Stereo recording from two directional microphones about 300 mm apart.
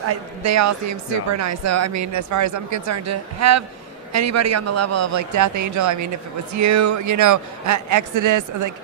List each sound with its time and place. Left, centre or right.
0.0 s a man's voice: right